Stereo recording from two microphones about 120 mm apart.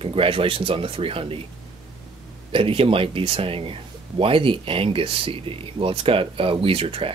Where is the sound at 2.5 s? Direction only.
50° right (ahead or behind).